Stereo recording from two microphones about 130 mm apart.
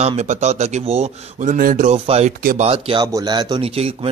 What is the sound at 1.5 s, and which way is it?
Speech, 85° right.